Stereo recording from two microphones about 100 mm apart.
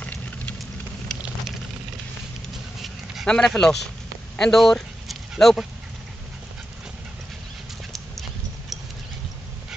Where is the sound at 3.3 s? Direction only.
5° left (ahead or behind).